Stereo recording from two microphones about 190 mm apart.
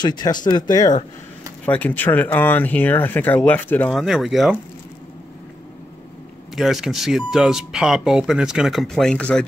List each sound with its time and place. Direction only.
0.0 s speech: 20° left (ahead or behind)
1.7 s speech: 10° left (ahead or behind)
6.5 s speech: centre (ahead or behind)